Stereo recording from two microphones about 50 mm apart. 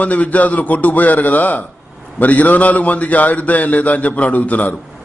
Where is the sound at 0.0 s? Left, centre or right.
Left.